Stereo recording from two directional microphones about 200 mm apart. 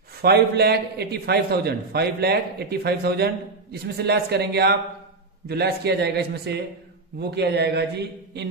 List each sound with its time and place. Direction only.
0.2 s a man's voice: 55° right (ahead or behind)